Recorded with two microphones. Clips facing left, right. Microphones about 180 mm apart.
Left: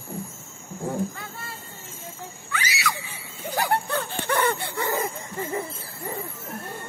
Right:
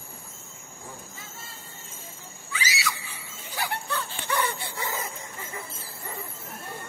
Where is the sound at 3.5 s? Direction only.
50° left (ahead or behind).